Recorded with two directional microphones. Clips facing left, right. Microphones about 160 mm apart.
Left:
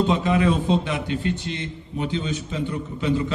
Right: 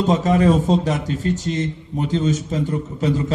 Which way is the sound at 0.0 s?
40° right (ahead or behind).